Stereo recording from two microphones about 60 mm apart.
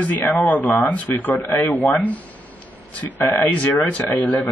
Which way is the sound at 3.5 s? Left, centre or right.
Left.